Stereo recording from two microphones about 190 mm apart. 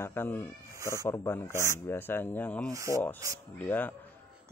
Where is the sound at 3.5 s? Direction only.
10° left (ahead or behind).